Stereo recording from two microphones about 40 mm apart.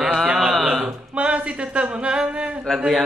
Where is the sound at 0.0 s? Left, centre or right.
Centre.